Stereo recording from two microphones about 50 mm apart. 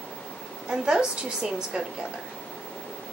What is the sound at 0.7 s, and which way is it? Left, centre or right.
A woman's voice, centre.